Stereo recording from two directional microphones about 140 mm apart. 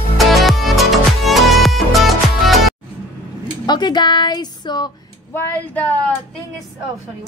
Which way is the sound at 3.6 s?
30° left (ahead or behind).